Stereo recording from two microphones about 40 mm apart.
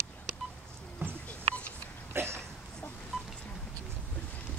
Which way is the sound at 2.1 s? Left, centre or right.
Right.